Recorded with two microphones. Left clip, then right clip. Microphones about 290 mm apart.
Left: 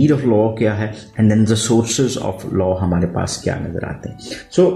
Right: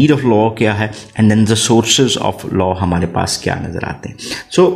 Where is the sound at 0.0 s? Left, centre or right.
Right.